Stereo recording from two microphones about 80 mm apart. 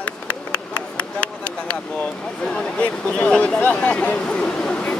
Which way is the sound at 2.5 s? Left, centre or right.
Centre.